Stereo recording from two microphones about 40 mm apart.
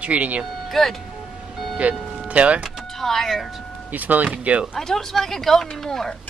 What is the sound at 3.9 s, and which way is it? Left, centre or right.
Speech, right.